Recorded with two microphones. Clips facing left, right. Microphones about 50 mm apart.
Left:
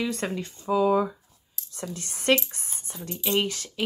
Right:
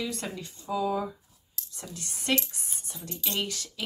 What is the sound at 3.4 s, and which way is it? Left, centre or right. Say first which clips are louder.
Speech: left 4 dB; left.